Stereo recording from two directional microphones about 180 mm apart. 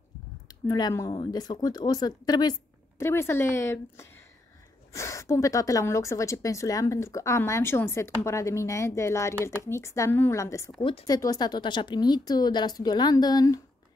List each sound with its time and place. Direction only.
0.7 s a woman's voice: 20° left (ahead or behind)
10.8 s a woman's voice: 30° left (ahead or behind)